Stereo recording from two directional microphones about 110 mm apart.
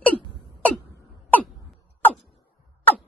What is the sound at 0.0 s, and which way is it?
Hiccup, 15° left (ahead or behind).